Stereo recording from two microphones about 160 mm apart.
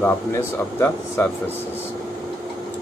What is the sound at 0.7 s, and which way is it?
Speech, 15° left (ahead or behind).